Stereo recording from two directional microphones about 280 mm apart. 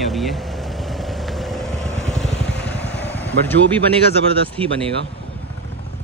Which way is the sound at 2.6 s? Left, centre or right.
Left.